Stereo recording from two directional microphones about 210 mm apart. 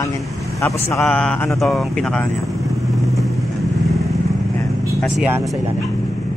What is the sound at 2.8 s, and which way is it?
Vehicle, centre (ahead or behind).